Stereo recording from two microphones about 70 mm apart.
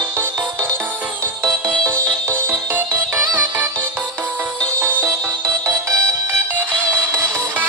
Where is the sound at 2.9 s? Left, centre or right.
Right.